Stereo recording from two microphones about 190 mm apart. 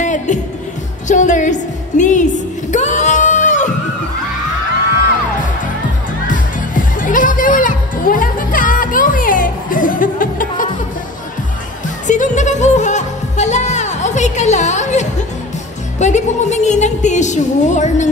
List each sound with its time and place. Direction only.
0.0 s music: 40° left (ahead or behind)
1.0 s a sound: 40° left (ahead or behind)
6.2 s music: 45° left (ahead or behind)
12.1 s music: 40° left (ahead or behind)